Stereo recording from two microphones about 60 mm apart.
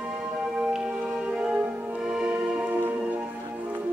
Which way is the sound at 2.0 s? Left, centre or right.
Centre.